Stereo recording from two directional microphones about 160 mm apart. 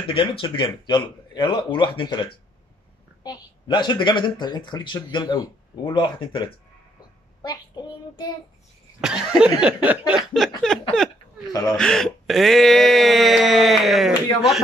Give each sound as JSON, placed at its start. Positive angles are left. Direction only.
{"t": 0.0, "sound": "a woman's voice", "side_deg": 30}
{"t": 9.0, "sound": "speech", "side_deg": -5}